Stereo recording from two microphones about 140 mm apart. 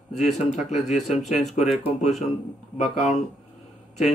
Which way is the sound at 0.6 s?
55° left (ahead or behind).